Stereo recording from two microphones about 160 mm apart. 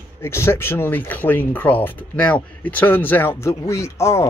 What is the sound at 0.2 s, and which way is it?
Speech, 15° left (ahead or behind).